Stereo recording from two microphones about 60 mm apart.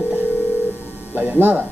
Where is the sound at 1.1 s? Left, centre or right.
Right.